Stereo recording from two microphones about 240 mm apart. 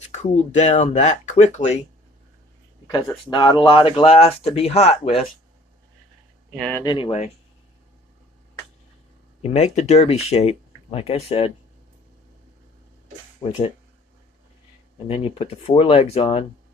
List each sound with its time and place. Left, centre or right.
0.1 s speech: left
2.9 s speech: centre
6.5 s speech: centre
6.8 s speech: left
9.4 s speech: left
13.4 s speech: left
15.0 s speech: left